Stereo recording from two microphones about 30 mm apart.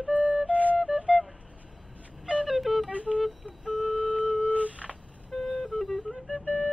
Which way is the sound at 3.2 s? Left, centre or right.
Centre.